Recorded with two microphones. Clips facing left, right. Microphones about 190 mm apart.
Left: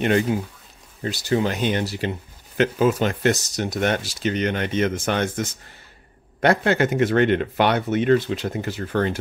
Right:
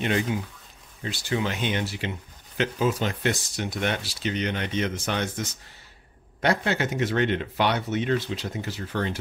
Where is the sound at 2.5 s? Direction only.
55° left (ahead or behind).